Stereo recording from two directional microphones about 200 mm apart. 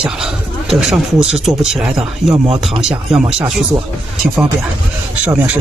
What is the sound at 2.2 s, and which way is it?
Speech, 15° left (ahead or behind).